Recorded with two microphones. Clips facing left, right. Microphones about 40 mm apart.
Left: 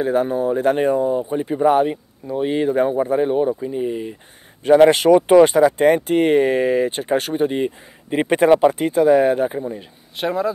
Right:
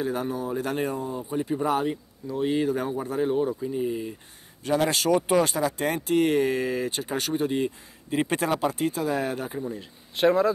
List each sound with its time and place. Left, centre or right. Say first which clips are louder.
0.0 s speech: left 10 dB; left
4.6 s speech: left 12 dB; left
10.1 s speech: right 1 dB; centre